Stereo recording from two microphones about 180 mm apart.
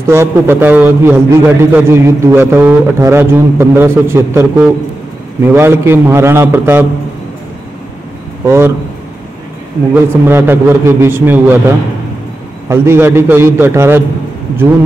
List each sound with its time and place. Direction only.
0.1 s a man's voice: 15° right (ahead or behind)
8.5 s a man's voice: 15° right (ahead or behind)
10.2 s a man's voice: 10° right (ahead or behind)
12.6 s a man's voice: 15° right (ahead or behind)